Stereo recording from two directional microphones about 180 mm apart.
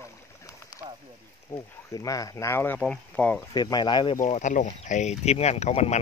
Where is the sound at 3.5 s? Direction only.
25° left (ahead or behind).